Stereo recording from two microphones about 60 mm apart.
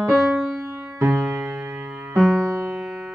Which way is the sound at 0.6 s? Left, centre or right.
Right.